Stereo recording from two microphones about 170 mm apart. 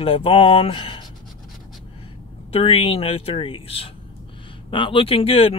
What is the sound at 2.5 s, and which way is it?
Speech, 35° left (ahead or behind).